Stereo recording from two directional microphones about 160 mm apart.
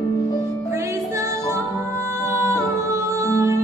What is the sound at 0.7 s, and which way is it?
Music, 20° right (ahead or behind).